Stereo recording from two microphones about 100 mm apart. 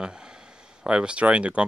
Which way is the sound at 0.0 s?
10° right (ahead or behind).